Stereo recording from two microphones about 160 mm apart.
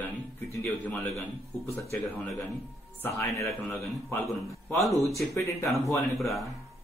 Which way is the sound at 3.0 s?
15° left (ahead or behind).